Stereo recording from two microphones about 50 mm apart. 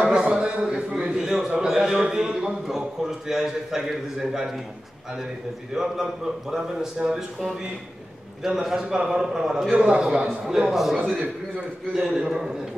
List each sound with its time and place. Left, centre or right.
0.0 s a sound: centre
1.1 s a man's voice: centre
5.8 s a man's voice: centre
8.5 s a man's voice: centre
10.7 s a man's voice: centre